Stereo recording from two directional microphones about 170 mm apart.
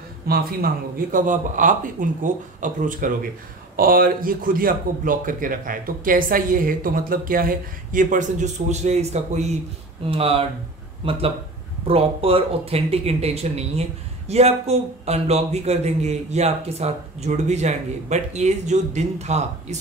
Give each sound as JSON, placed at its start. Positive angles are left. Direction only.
{"t": 0.3, "sound": "a man's voice", "side_deg": -60}